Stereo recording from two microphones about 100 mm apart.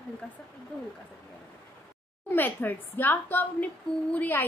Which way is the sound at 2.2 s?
20° left (ahead or behind).